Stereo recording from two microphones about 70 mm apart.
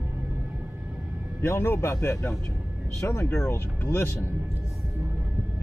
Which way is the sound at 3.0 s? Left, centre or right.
Left.